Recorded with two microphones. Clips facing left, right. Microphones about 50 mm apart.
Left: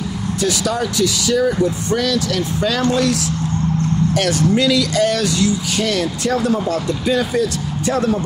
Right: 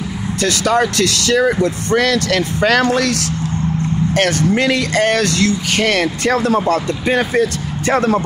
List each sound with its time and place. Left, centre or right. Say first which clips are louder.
0.4 s speech: right 5 dB; right
4.1 s speech: right 3 dB; right